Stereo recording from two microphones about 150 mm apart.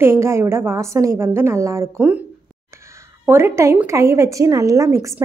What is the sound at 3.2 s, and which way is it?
A woman's voice, 15° right (ahead or behind).